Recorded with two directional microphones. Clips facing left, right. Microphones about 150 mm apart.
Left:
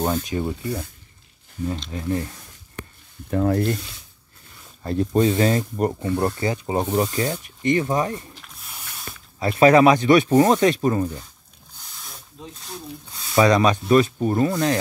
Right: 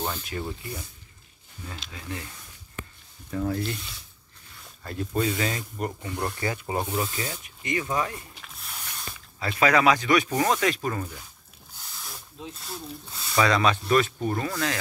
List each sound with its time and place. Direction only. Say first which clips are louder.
0.3 s speech: left 7 dB; 15° left (ahead or behind)
1.9 s speech: left 9 dB; 35° left (ahead or behind)
3.3 s speech: left 8 dB; 60° left (ahead or behind)
4.8 s speech: left 8 dB; 35° left (ahead or behind)
6.9 s speech: left 8 dB; 40° left (ahead or behind)
8.4 s a sound: even; centre (ahead or behind)
9.5 s speech: left 7 dB; 30° left (ahead or behind)
11.8 s rub: even; centre (ahead or behind)
13.3 s speech: left 6 dB; 20° left (ahead or behind)
14.0 s speech: left 8 dB; 35° left (ahead or behind)